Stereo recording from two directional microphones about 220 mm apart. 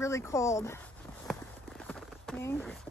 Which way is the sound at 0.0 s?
15° left (ahead or behind).